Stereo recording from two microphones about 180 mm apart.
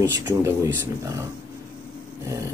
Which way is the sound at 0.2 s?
15° right (ahead or behind).